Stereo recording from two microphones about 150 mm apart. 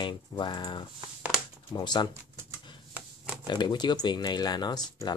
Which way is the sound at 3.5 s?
30° left (ahead or behind).